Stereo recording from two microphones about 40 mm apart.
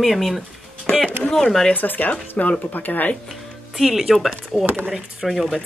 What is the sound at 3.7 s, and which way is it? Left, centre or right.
Speech, centre.